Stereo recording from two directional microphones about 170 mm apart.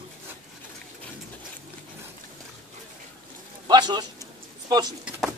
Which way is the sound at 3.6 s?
25° right (ahead or behind).